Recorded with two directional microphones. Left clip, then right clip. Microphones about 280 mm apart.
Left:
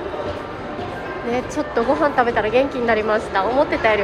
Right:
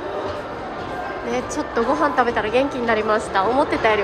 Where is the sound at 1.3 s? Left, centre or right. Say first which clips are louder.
Left 1 dB; centre.